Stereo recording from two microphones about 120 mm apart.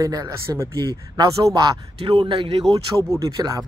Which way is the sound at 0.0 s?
30° right (ahead or behind).